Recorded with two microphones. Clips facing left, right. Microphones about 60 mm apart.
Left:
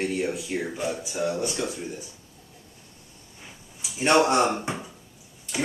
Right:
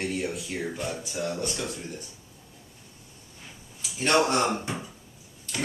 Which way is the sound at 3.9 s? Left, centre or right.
Centre.